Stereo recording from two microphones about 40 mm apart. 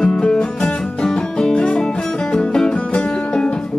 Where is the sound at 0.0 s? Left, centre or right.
Centre.